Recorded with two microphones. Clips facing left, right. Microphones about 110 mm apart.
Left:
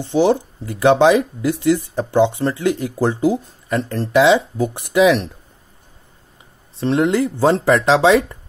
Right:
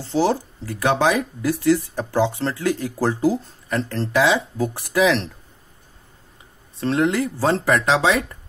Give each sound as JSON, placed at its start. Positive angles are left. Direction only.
{"t": 0.0, "sound": "speech", "side_deg": 20}
{"t": 6.8, "sound": "speech", "side_deg": 25}